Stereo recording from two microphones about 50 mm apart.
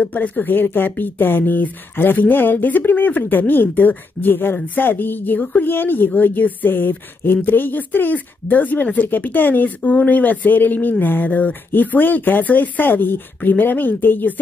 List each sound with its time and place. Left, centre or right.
0.0 s speech: left